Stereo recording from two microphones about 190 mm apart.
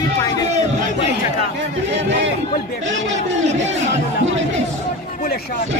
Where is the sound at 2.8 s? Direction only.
40° right (ahead or behind).